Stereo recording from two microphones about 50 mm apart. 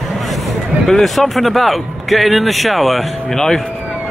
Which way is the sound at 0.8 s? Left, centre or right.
Centre.